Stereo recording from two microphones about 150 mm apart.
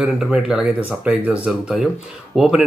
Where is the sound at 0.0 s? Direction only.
5° right (ahead or behind).